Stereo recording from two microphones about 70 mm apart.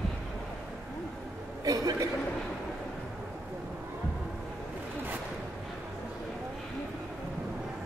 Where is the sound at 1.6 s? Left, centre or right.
Right.